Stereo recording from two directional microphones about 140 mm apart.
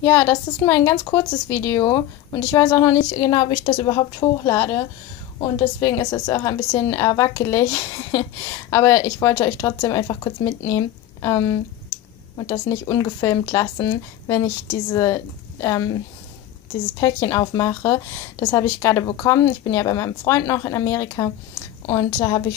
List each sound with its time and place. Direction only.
0.0 s a woman's voice: 20° left (ahead or behind)
17.0 s a woman's voice: 25° left (ahead or behind)